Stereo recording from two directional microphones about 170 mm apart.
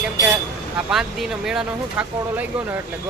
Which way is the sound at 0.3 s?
5° right (ahead or behind).